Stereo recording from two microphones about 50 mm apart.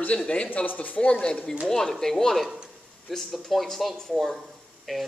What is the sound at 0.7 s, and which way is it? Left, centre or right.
Speech, left.